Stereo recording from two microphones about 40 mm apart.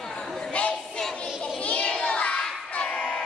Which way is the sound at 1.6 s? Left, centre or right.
Left.